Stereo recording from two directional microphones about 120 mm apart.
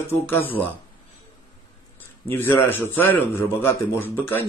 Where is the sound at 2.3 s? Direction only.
15° left (ahead or behind).